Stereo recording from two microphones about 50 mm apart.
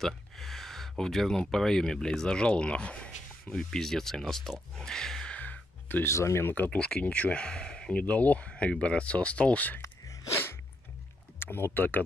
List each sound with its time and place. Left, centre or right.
0.0 s speech: centre; by 3.1 s left
3.4 s speech: centre
5.3 s music: left
6.0 s speech: left
6.4 s speech: left
6.8 s speech: left
7.9 s speech: left
9.8 s gasp: left
11.3 s speech: left